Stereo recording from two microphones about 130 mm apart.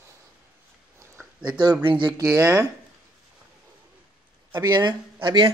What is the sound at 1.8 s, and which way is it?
Speech, 40° right (ahead or behind).